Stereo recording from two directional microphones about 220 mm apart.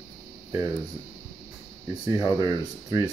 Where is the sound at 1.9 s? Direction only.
15° right (ahead or behind).